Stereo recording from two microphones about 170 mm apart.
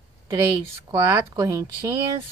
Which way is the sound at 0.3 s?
25° right (ahead or behind).